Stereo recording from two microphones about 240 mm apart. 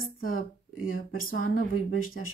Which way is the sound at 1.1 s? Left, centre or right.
Left.